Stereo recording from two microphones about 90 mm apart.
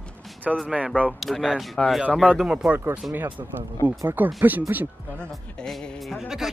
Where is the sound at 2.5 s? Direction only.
10° right (ahead or behind).